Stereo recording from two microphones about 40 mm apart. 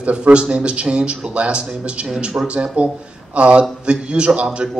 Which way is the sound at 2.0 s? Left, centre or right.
Centre.